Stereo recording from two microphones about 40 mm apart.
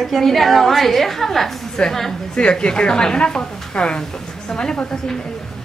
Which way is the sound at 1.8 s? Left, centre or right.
Left.